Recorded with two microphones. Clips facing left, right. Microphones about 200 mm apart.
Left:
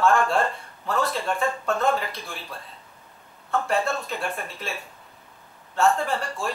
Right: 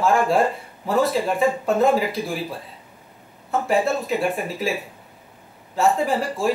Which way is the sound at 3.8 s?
Centre (ahead or behind).